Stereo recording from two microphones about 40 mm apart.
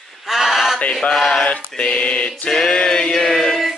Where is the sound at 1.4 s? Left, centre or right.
Left.